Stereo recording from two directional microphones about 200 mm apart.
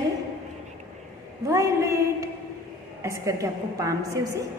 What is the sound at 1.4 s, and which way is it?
A woman's voice, 15° right (ahead or behind).